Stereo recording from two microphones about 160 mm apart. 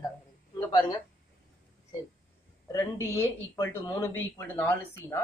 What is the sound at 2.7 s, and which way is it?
Speech, 20° left (ahead or behind).